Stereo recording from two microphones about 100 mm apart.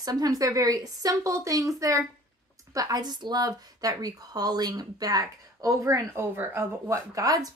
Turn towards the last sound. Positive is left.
turn(degrees=-35)  # may be behind; listen again after turning